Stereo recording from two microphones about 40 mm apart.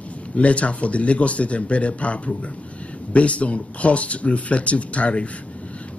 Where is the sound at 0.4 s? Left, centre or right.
Left.